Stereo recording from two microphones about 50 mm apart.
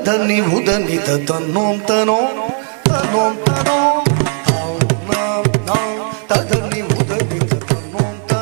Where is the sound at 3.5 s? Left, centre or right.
Centre.